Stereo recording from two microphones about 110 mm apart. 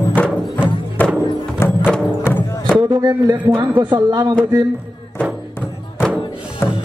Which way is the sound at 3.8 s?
40° right (ahead or behind).